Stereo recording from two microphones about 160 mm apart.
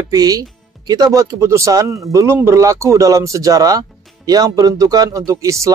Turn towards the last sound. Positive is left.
turn(degrees=-20)  # may be behind; listen again after turning